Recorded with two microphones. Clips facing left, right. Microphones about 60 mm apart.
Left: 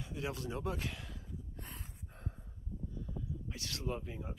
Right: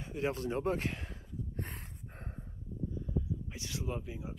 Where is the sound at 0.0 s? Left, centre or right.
Right.